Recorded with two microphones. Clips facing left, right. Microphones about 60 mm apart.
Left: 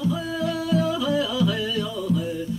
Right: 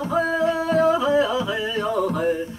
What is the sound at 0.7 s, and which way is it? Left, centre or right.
Music, right.